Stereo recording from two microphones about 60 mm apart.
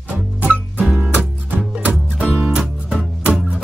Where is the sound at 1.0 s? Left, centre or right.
Right.